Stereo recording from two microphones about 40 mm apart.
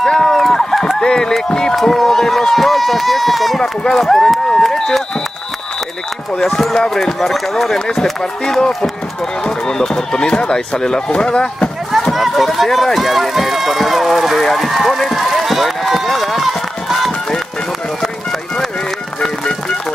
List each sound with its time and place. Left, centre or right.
0.0 s a sound: centre
1.0 s speech: centre
1.8 s speech: centre
4.5 s run: centre
6.3 s speech: centre
12.1 s speech: centre
14.7 s speech: centre
15.1 s run: centre